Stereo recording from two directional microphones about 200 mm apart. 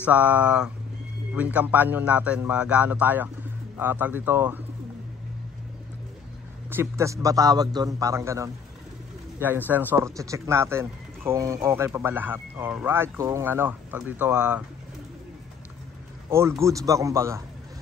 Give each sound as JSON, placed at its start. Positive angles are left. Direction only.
{"t": 0.0, "sound": "speech", "side_deg": -5}
{"t": 6.7, "sound": "speech", "side_deg": -15}
{"t": 16.3, "sound": "speech", "side_deg": -15}